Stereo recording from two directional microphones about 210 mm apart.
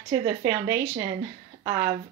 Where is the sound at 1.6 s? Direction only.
15° right (ahead or behind).